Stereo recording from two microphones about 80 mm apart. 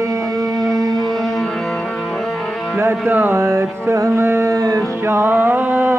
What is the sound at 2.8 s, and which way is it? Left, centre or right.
Music, right.